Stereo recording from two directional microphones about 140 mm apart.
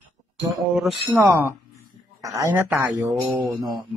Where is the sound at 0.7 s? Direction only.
5° right (ahead or behind).